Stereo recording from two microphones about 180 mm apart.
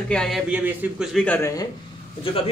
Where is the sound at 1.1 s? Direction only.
10° left (ahead or behind).